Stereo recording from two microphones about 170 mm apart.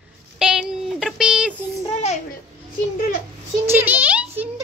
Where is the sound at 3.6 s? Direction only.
10° right (ahead or behind).